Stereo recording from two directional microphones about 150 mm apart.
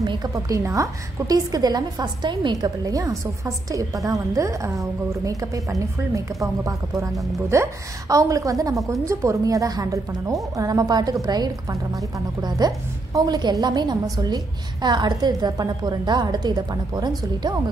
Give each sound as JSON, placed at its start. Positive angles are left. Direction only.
{"t": 0.0, "sound": "a woman's voice", "side_deg": -30}